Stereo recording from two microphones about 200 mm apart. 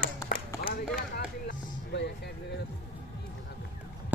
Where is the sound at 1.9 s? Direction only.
60° left (ahead or behind).